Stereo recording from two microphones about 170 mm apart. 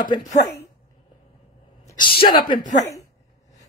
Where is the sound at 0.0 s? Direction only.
25° left (ahead or behind).